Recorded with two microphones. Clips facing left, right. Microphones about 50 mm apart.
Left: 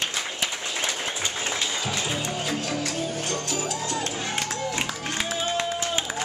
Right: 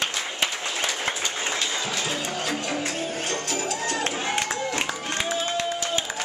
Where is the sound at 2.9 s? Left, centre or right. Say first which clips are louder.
Even; right.